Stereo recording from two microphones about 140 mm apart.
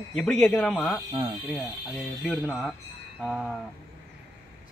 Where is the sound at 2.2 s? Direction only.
10° right (ahead or behind).